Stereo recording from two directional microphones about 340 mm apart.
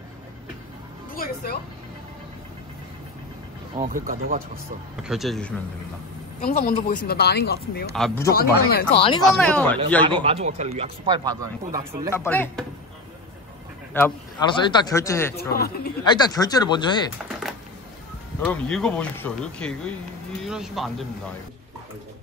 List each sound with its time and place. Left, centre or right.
1.1 s music: left
3.7 s speech: right
5.0 s speech: centre
6.4 s speech: left
7.9 s speech: centre
8.3 s speech: left
9.2 s speech: centre
10.0 s speech: centre
12.1 s speech: centre
13.9 s speech: centre
15.5 s speech: left
16.1 s speech: centre
18.4 s speech: centre